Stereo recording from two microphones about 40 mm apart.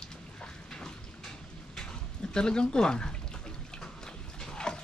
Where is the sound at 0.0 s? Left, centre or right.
Centre.